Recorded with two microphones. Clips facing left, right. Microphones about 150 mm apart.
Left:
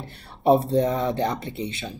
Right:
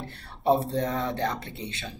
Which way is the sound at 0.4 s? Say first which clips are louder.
Left 5 dB; 15° left (ahead or behind).